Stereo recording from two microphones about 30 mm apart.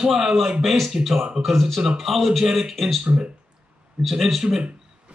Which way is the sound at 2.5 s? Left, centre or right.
Centre.